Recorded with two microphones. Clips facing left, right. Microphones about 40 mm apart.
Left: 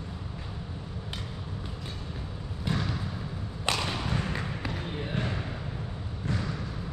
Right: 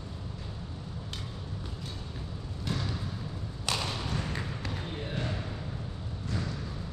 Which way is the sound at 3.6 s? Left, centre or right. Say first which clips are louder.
Left 3 dB; left.